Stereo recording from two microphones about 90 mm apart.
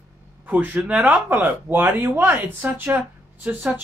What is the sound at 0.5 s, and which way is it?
A woman's voice, 15° right (ahead or behind).